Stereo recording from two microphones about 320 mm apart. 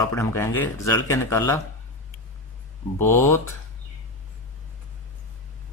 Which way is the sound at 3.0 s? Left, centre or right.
Centre.